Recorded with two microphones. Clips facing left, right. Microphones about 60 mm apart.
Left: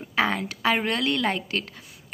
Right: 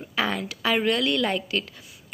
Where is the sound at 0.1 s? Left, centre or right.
Left.